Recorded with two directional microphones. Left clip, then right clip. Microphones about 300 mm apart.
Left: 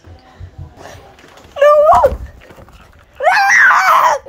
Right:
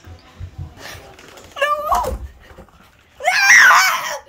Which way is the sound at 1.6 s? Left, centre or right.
Centre.